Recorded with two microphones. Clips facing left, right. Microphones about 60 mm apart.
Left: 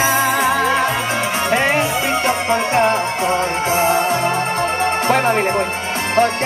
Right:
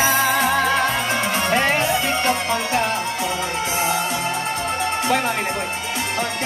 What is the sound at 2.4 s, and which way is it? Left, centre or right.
Music, left.